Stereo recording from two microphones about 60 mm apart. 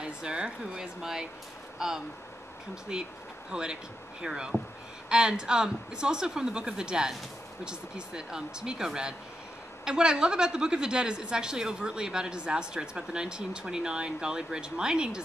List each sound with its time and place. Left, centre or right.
0.0 s a woman's voice: centre